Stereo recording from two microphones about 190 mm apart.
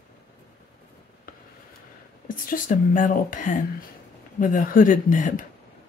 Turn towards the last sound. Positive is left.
turn(degrees=40)  # may be behind; listen again after turning